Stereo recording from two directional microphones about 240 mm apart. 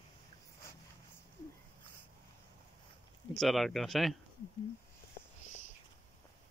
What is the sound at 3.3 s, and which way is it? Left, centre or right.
Speech, centre.